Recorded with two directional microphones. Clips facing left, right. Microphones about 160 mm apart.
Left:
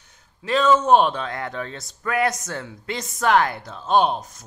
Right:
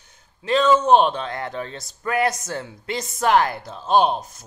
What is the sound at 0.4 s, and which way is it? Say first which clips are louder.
Speech: right 1 dB; 5° left (ahead or behind).